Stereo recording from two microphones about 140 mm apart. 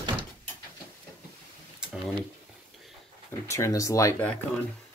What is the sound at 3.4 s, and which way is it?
Speech, 20° left (ahead or behind).